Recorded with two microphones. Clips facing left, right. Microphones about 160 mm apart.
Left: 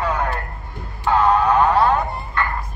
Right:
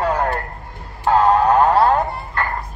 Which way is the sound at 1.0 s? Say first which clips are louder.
Right 2 dB; 35° right (ahead or behind).